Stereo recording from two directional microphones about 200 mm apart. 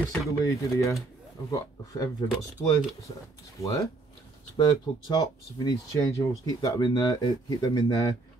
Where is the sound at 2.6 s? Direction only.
30° left (ahead or behind).